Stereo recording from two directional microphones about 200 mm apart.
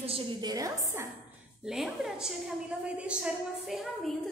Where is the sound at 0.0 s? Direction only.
25° right (ahead or behind).